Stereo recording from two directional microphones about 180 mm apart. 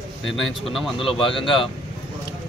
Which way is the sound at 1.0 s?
30° left (ahead or behind).